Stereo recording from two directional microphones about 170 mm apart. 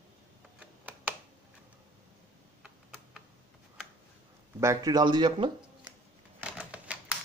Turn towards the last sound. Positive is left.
turn(degrees=-5)  # may be behind; listen again after turning